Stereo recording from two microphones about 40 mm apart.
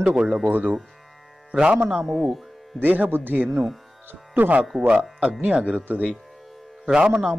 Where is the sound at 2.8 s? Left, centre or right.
Right.